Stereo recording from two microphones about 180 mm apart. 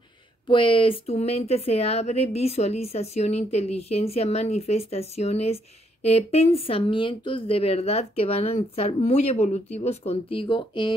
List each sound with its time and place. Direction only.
0.5 s speech: 30° left (ahead or behind)